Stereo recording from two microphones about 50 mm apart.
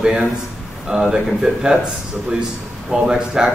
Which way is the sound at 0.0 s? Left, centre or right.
Centre.